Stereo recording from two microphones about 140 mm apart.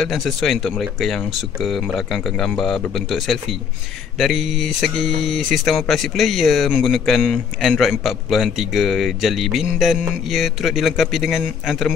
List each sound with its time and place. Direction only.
0.0 s speech: centre (ahead or behind)